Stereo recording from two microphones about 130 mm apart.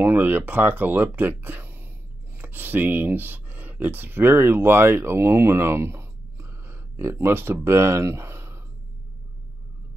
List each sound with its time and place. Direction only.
0.0 s speech: 15° right (ahead or behind)